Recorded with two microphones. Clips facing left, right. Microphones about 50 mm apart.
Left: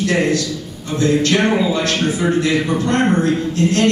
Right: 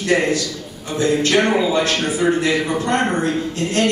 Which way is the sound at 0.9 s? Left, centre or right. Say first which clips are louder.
Left 2 dB; centre.